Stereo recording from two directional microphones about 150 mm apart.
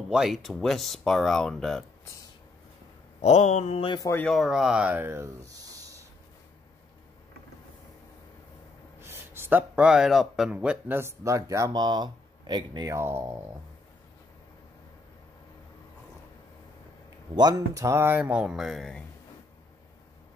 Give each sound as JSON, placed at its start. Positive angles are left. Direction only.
{"t": 0.1, "sound": "speech", "side_deg": 0}
{"t": 3.2, "sound": "mantra", "side_deg": 50}
{"t": 4.0, "sound": "speech", "side_deg": 15}
{"t": 4.3, "sound": "speech", "side_deg": 0}
{"t": 9.0, "sound": "speech", "side_deg": -15}
{"t": 12.9, "sound": "speech", "side_deg": -15}
{"t": 17.4, "sound": "speech", "side_deg": -25}